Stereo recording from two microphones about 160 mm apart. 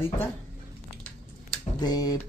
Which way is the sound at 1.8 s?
25° left (ahead or behind).